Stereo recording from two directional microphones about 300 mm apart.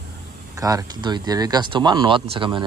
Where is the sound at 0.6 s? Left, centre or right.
Centre.